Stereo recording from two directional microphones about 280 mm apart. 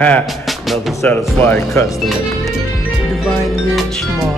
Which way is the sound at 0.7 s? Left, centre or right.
Centre.